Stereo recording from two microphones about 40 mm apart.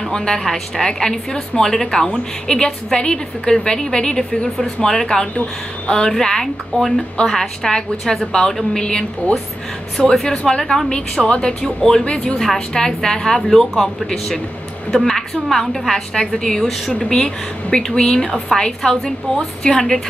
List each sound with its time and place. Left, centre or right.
0.1 s a woman's voice: centre
12.0 s speech: left
12.5 s a woman's voice: centre